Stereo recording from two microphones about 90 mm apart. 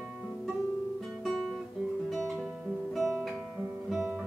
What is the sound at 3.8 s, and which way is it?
Guitar, 5° right (ahead or behind).